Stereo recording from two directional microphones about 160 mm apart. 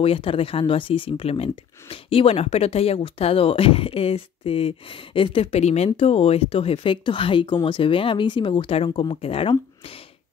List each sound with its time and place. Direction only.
0.0 s speech: 35° left (ahead or behind)